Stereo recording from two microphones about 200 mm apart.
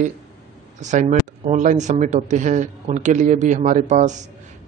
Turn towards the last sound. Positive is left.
turn(degrees=-35)  # may be behind; listen again after turning